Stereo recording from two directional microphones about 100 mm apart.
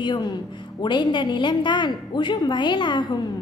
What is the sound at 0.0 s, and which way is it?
A woman's voice, 50° left (ahead or behind).